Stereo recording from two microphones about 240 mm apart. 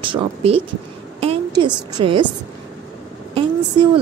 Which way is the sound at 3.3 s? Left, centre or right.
Right.